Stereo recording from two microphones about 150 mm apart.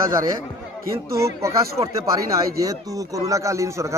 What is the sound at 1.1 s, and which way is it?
Speech, 20° right (ahead or behind).